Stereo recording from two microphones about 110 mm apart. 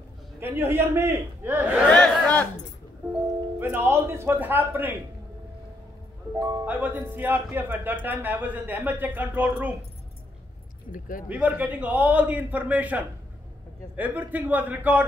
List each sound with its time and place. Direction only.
0.4 s speech: 20° right (ahead or behind)
1.9 s speech: 10° left (ahead or behind)
3.5 s speech: 20° right (ahead or behind)
6.6 s speech: 15° right (ahead or behind)
11.2 s speech: 15° right (ahead or behind)